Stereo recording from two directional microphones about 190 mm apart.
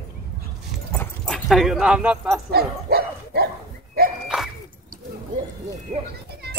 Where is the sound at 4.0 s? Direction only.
50° right (ahead or behind).